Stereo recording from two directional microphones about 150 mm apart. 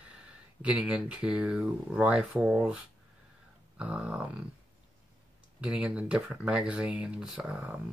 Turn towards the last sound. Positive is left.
turn(degrees=-10)  # may be behind; listen again after turning